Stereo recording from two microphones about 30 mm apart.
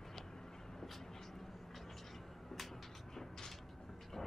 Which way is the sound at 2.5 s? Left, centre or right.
Centre.